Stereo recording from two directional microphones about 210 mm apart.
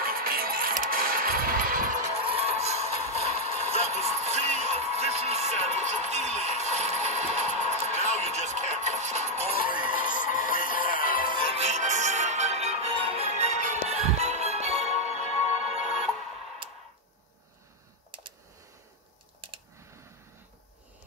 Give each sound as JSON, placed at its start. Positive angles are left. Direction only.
{"t": 0.0, "sound": "music", "side_deg": -45}
{"t": 10.1, "sound": "music", "side_deg": 40}
{"t": 11.5, "sound": "music", "side_deg": -35}